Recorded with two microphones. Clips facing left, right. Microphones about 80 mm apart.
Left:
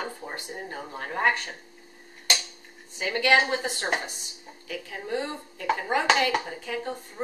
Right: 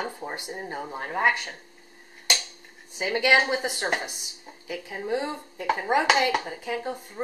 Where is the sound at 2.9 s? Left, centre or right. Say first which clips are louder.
Right 1 dB; centre.